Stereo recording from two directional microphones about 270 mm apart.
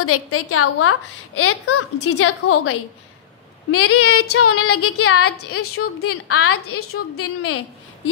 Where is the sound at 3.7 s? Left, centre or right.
Left.